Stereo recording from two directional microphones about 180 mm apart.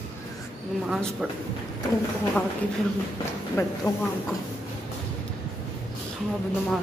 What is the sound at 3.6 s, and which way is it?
Speech, 15° left (ahead or behind).